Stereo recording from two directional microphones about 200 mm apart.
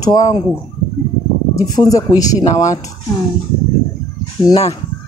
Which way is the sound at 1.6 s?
15° left (ahead or behind).